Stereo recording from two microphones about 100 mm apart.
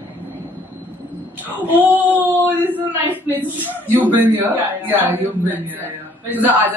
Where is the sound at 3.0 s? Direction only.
20° right (ahead or behind).